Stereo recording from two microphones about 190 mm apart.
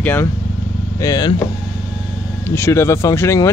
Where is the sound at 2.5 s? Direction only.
15° left (ahead or behind).